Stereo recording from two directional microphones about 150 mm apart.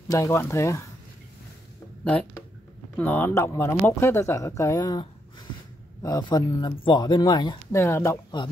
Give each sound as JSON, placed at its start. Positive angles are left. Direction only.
{"t": 0.1, "sound": "speech", "side_deg": 20}
{"t": 3.0, "sound": "speech", "side_deg": 15}
{"t": 6.0, "sound": "speech", "side_deg": 25}
{"t": 7.7, "sound": "speech", "side_deg": 20}